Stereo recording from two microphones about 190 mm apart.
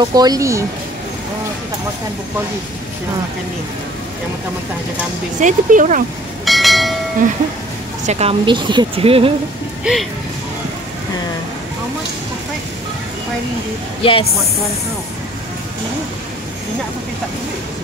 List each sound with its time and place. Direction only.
0.0 s speech: 20° right (ahead or behind)
5.4 s speech: 40° right (ahead or behind)
6.4 s a sound: centre (ahead or behind)
8.1 s speech: 30° right (ahead or behind)
9.9 s speech: 5° right (ahead or behind)
14.0 s speech: 30° left (ahead or behind)